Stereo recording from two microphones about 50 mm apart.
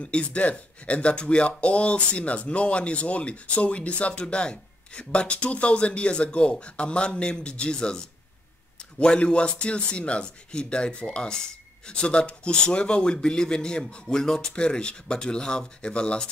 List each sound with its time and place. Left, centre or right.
0.0 s speech: left